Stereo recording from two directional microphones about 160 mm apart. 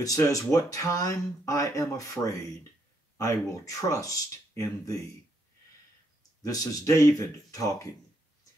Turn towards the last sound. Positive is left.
turn(degrees=20)  # may be behind; listen again after turning